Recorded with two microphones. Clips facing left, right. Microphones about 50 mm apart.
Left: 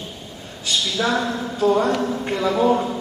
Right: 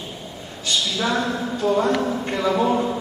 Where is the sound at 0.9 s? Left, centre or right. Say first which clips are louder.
Left 3 dB; centre.